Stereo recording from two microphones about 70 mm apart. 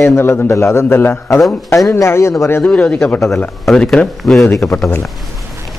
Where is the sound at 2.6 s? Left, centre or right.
Centre.